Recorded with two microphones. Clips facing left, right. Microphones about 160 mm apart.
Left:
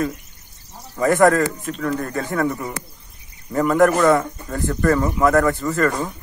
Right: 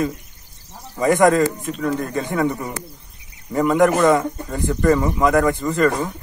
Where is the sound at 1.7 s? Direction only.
5° right (ahead or behind).